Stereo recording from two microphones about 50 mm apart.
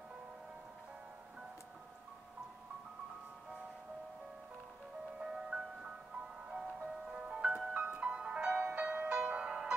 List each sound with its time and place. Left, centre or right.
5.2 s music: centre